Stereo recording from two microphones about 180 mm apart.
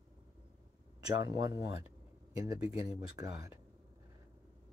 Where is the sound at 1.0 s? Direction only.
20° right (ahead or behind).